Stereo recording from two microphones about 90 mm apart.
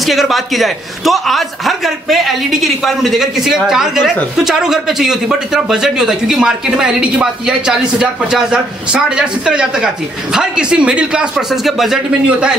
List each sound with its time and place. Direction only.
0.0 s a man's voice: centre (ahead or behind)